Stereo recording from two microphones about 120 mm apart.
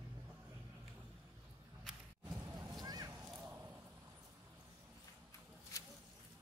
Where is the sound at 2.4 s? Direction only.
35° right (ahead or behind).